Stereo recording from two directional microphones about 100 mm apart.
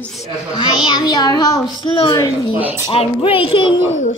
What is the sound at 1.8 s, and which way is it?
A child's voice, 60° left (ahead or behind).